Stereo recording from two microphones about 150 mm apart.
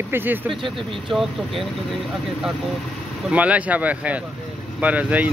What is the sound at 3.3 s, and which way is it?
Speech, 10° right (ahead or behind).